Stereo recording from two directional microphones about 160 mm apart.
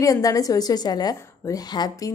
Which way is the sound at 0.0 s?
20° left (ahead or behind).